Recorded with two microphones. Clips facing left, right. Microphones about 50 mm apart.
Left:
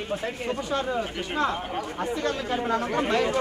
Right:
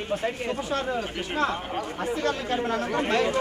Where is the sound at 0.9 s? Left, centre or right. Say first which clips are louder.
Left 1 dB; centre.